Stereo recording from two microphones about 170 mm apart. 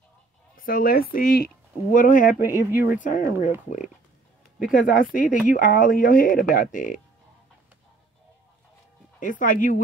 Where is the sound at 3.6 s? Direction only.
45° left (ahead or behind).